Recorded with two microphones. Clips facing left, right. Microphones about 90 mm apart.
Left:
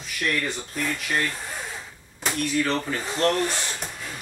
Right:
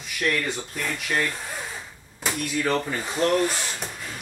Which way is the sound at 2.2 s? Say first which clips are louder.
Left 1 dB; 10° right (ahead or behind).